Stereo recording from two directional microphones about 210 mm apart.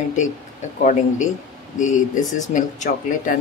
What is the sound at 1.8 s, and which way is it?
Speech, 35° left (ahead or behind).